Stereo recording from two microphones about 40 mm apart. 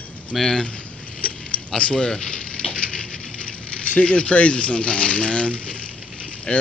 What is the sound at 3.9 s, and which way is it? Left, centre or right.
Speech, left.